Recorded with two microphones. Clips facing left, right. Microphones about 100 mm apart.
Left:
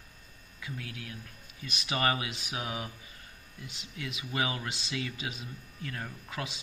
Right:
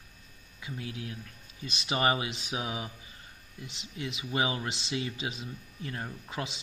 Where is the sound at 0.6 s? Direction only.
20° right (ahead or behind).